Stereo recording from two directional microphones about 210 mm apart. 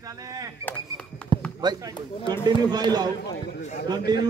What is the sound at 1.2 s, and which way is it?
Basketball bounce, 5° left (ahead or behind).